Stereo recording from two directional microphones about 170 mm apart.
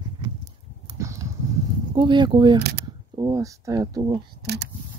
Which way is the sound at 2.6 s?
75° right (ahead or behind).